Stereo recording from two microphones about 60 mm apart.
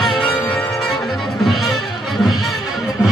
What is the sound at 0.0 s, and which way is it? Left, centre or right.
Music, centre.